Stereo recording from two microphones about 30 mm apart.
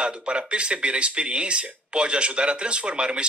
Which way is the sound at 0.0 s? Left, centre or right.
Right.